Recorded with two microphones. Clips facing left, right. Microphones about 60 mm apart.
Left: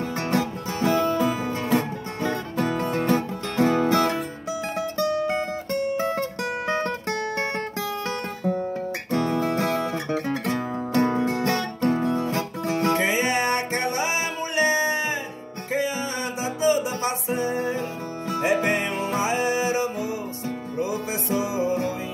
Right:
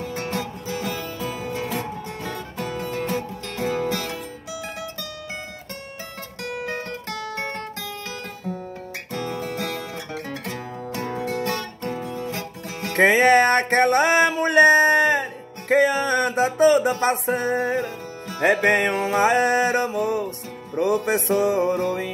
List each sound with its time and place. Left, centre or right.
0.2 s music: left
2.2 s music: left
9.4 s music: left
10.1 s music: left
10.5 s music: left
12.9 s music: right